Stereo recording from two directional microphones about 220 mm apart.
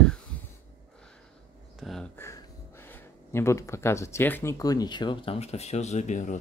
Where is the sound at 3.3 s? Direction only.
10° left (ahead or behind); by 6.4 s 35° left (ahead or behind).